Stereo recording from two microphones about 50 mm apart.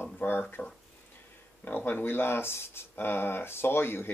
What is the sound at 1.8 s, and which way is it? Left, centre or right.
Speech, left.